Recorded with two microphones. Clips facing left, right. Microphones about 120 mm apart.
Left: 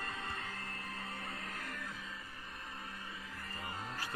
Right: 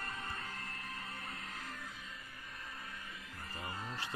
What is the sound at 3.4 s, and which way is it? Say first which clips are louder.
Music: right 2 dB; 30° right (ahead or behind).